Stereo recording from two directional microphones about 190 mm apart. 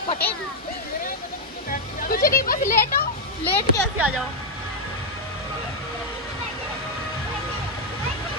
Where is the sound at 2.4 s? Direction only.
45° left (ahead or behind).